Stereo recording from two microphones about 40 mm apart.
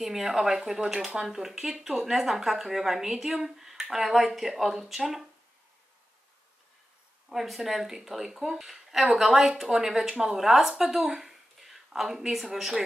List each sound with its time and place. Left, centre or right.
0.0 s speech: centre
7.2 s speech: centre